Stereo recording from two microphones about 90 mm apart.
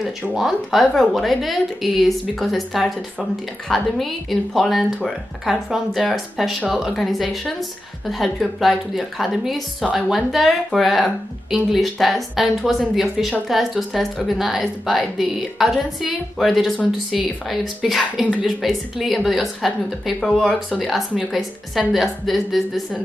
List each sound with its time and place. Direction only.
0.4 s speech: centre (ahead or behind)